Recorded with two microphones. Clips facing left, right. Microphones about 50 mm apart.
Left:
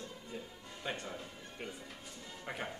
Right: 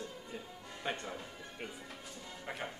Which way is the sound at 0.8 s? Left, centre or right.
Centre.